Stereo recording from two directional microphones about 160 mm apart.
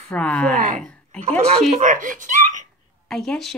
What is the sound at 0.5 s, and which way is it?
A woman's voice, 55° right (ahead or behind).